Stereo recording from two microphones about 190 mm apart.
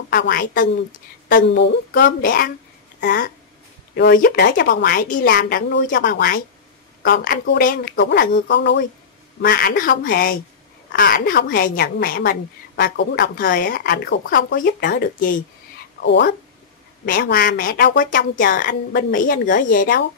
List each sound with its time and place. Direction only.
0.1 s a woman's voice: 55° left (ahead or behind)
1.5 s a woman's voice: 65° left (ahead or behind)
2.2 s a woman's voice: 50° left (ahead or behind); by 8.7 s 70° left (ahead or behind)
9.4 s a woman's voice: 50° left (ahead or behind)
16.0 s a woman's voice: 65° left (ahead or behind)
17.0 s a woman's voice: 50° left (ahead or behind)